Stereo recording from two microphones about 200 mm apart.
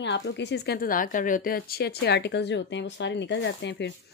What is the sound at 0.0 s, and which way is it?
Speech, 60° left (ahead or behind).